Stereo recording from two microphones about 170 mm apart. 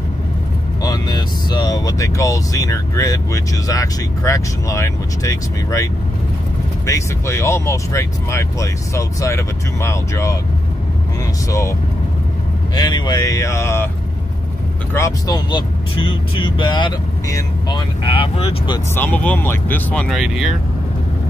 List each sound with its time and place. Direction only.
0.8 s speech: 25° left (ahead or behind)
6.9 s speech: 15° left (ahead or behind)
12.7 s speech: 25° left (ahead or behind)
15.0 s speech: 20° left (ahead or behind)
18.9 s speech: 10° left (ahead or behind)